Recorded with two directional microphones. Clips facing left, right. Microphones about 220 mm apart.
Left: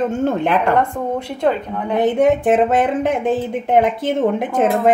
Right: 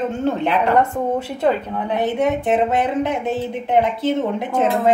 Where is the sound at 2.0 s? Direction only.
50° left (ahead or behind).